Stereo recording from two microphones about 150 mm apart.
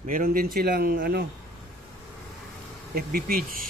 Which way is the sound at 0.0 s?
65° right (ahead or behind).